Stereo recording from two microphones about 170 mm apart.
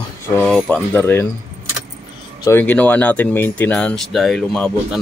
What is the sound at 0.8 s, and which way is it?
Speech, 15° left (ahead or behind).